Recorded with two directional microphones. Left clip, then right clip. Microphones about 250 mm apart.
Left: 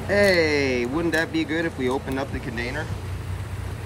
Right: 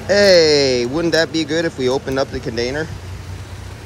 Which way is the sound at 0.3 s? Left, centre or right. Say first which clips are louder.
Right 9 dB; right.